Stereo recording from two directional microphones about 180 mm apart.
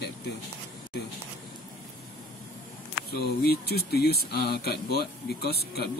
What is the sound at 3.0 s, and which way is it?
Speech, 60° left (ahead or behind).